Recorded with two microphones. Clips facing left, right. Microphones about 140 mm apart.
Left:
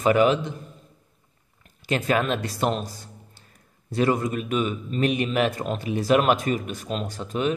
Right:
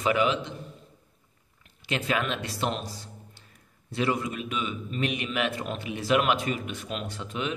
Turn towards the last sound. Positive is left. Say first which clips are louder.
# left 6 dB
turn(degrees=40)  # may be behind; listen again after turning